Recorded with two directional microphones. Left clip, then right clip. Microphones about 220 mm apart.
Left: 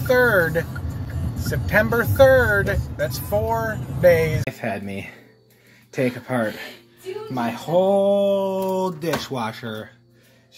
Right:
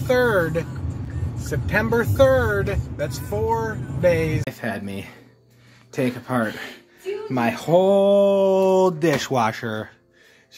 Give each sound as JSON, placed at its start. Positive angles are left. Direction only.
{"t": 0.2, "sound": "speech", "side_deg": -5}
{"t": 1.7, "sound": "speech", "side_deg": -10}
{"t": 7.3, "sound": "speech", "side_deg": -45}